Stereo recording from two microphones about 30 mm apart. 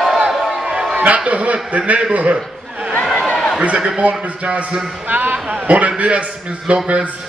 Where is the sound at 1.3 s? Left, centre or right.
Right.